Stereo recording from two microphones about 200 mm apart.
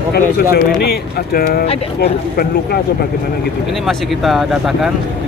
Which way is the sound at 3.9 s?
Centre (ahead or behind).